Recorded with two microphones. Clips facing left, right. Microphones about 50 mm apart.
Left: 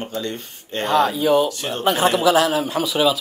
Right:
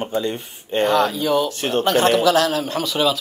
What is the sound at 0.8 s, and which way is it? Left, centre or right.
A man's voice, centre.